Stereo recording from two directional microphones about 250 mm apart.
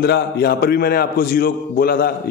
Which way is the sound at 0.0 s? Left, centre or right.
Left.